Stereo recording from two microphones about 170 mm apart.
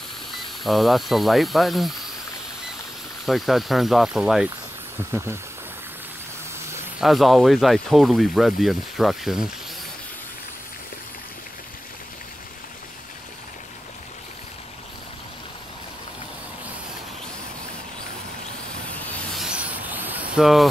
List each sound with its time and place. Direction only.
0.7 s speech: centre (ahead or behind)
3.3 s speech: centre (ahead or behind)
5.1 s speech: 15° right (ahead or behind)
7.0 s speech: centre (ahead or behind)
18.9 s a sound: centre (ahead or behind)